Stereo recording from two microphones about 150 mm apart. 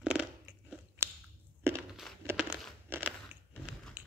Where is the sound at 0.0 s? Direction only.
10° right (ahead or behind).